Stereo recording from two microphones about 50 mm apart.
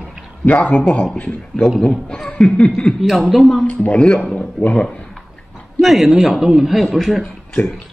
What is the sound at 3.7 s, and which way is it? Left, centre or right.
Speech, left.